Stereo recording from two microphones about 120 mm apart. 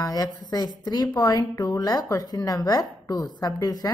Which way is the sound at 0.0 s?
30° left (ahead or behind).